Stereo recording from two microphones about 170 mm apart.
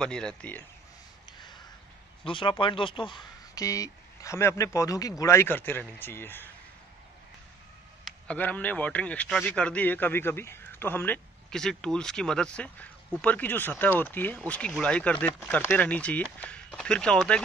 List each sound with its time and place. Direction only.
0.0 s speech: 5° left (ahead or behind)
2.2 s speech: 30° left (ahead or behind); by 6.5 s 10° left (ahead or behind)
8.0 s speech: 10° left (ahead or behind)